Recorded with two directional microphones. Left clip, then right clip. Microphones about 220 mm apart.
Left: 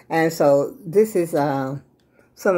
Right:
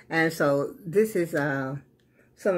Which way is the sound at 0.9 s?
5° left (ahead or behind).